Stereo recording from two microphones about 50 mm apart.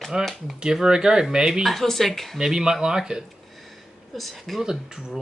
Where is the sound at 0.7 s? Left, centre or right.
Centre.